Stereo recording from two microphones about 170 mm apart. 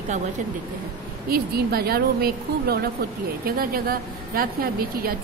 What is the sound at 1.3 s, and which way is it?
A woman's voice, 65° right (ahead or behind).